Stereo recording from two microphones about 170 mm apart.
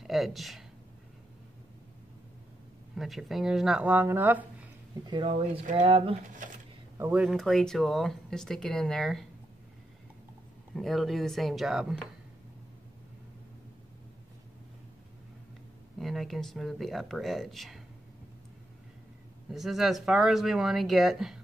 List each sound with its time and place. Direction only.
0.0 s speech: centre (ahead or behind)
3.0 s speech: centre (ahead or behind)
5.0 s speech: 30° right (ahead or behind)
7.0 s speech: 5° right (ahead or behind)
10.7 s speech: centre (ahead or behind)
16.0 s speech: centre (ahead or behind)
19.5 s speech: centre (ahead or behind)